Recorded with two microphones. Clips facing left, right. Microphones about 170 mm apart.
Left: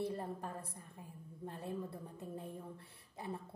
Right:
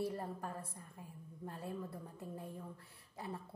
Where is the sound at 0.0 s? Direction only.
25° left (ahead or behind).